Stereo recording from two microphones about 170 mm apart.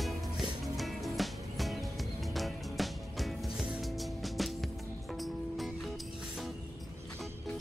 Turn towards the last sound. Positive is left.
turn(degrees=0)  # may be behind; listen again after turning